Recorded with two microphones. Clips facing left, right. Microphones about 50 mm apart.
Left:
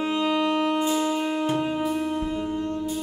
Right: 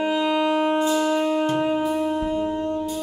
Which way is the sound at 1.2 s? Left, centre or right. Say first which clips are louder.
Right 4 dB; centre.